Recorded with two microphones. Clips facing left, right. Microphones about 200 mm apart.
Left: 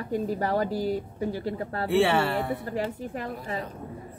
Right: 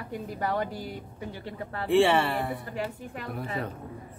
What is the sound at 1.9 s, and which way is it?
Speech, centre (ahead or behind).